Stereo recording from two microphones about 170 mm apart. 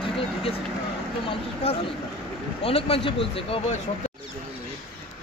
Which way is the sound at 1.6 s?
35° left (ahead or behind).